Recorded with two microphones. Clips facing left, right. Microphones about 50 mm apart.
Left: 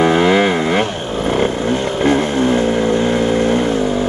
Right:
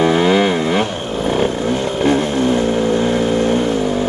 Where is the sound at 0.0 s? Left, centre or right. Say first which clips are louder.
Left 1 dB; left.